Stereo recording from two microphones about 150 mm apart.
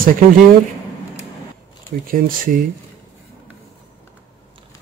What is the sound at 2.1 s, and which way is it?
Speech, 65° right (ahead or behind).